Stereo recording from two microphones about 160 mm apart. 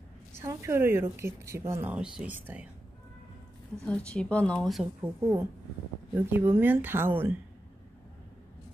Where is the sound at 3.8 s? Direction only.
5° left (ahead or behind).